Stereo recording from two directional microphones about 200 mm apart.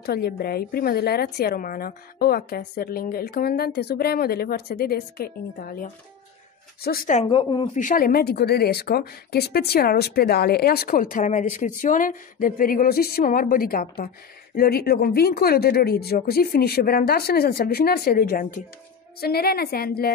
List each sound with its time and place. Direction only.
0.0 s speech: 50° left (ahead or behind)
7.2 s a woman's voice: 25° left (ahead or behind)
7.7 s speech: 40° left (ahead or behind)